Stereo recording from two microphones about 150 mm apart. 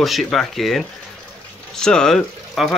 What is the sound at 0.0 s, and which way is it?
Speech, centre (ahead or behind).